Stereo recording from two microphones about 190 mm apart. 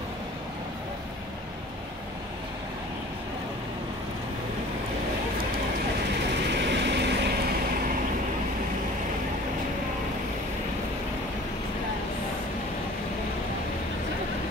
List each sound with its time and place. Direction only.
6.4 s vehicle: 65° right (ahead or behind)